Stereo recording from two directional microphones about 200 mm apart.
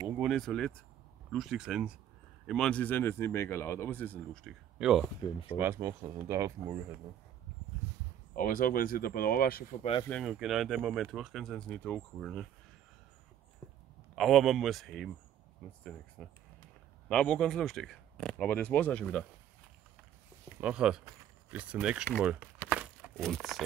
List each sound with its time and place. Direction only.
0.2 s speech: centre (ahead or behind)
5.6 s speech: 10° right (ahead or behind)
8.4 s speech: 45° left (ahead or behind)
10.0 s speech: centre (ahead or behind)
14.1 s speech: centre (ahead or behind)
20.6 s speech: 5° right (ahead or behind)
22.7 s crumpling: 5° right (ahead or behind)